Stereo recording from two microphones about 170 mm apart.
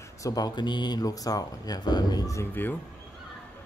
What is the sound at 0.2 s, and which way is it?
Speech, 20° left (ahead or behind).